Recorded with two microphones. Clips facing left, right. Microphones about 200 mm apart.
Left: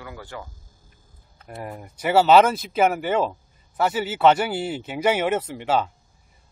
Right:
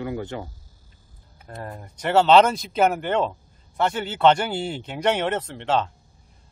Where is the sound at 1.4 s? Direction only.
10° left (ahead or behind).